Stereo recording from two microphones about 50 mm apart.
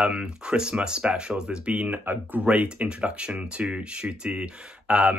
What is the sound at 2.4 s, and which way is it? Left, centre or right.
Speech, right.